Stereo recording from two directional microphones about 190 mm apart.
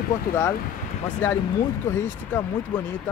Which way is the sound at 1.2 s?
15° left (ahead or behind).